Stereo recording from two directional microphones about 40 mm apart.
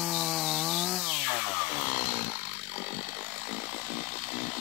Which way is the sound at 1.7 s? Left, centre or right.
Right.